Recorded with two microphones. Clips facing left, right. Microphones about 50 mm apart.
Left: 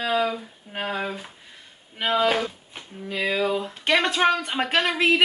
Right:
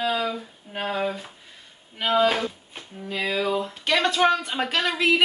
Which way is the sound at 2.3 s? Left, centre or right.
Centre.